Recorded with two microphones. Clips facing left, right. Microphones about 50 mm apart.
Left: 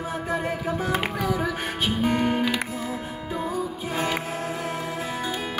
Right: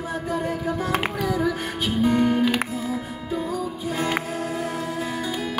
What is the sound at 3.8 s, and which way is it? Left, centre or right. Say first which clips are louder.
Music: right 3 dB; left.